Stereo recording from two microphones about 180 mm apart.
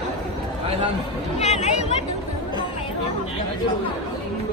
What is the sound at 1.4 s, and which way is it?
Speech, 40° left (ahead or behind).